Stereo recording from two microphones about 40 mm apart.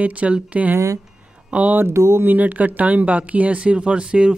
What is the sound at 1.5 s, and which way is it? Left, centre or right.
Speech, right.